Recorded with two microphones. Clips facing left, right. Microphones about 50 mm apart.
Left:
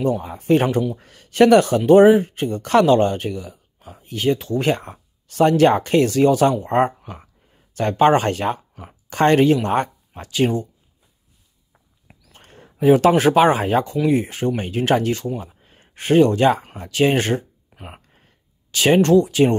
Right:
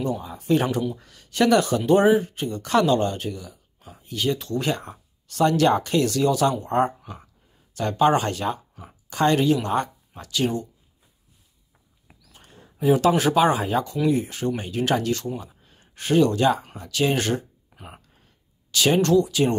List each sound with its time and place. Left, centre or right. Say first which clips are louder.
0.0 s speech: left 6 dB; left
12.4 s speech: left 6 dB; left
15.1 s speech: left 4 dB; left
15.4 s speech: left 4 dB; left
17.8 s a sound: left 4 dB; left